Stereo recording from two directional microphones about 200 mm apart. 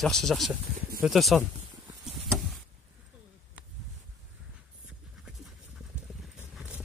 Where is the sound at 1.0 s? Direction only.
Centre (ahead or behind).